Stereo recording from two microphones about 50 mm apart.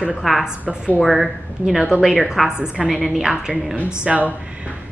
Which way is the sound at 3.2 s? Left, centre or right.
Centre.